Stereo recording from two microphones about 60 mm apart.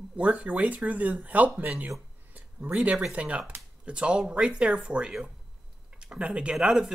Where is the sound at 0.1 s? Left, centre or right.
Right.